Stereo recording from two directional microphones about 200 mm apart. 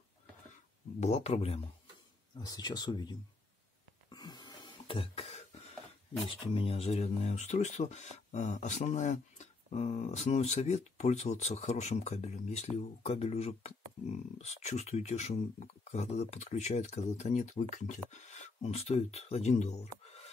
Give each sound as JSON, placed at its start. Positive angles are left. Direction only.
{"t": 1.0, "sound": "speech", "side_deg": 30}
{"t": 4.1, "sound": "a sound", "side_deg": 20}
{"t": 6.2, "sound": "speech", "side_deg": 25}